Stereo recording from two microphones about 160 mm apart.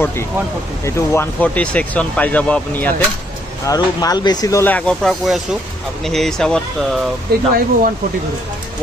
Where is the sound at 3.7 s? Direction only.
25° left (ahead or behind); by 7.0 s 5° left (ahead or behind).